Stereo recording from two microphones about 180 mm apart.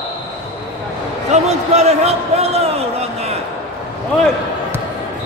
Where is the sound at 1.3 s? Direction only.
35° right (ahead or behind).